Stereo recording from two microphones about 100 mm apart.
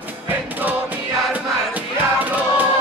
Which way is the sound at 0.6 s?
20° right (ahead or behind).